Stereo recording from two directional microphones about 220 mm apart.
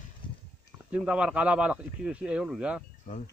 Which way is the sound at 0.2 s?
20° left (ahead or behind).